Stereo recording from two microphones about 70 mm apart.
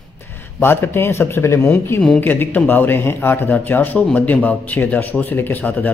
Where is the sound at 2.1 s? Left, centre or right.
Left.